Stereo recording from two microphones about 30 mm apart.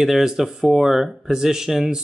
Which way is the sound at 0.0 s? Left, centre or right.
Centre.